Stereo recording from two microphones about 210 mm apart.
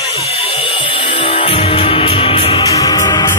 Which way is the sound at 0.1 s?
25° left (ahead or behind).